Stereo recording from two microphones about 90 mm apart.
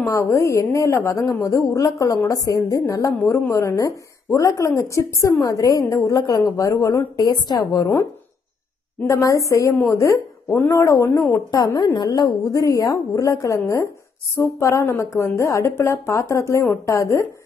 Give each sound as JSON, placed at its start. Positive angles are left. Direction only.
{"t": 0.0, "sound": "a woman's voice", "side_deg": 35}
{"t": 7.2, "sound": "a woman's voice", "side_deg": 50}
{"t": 9.0, "sound": "a woman's voice", "side_deg": 35}